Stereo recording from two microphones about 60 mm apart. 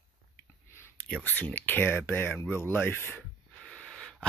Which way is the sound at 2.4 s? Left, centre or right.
Left.